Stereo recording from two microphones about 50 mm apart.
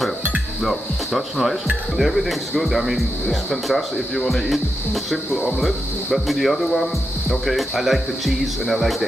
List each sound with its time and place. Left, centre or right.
0.6 s speech: centre